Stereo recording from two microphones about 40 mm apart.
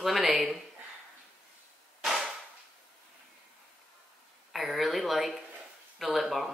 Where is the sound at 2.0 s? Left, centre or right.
Centre.